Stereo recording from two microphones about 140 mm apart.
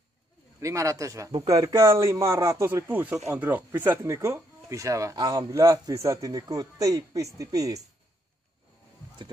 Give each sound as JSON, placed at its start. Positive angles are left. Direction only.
{"t": 0.6, "sound": "speech", "side_deg": -20}